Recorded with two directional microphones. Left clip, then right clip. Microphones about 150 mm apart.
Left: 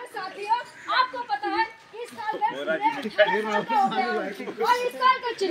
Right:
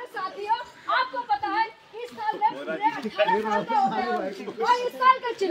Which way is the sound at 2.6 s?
50° left (ahead or behind).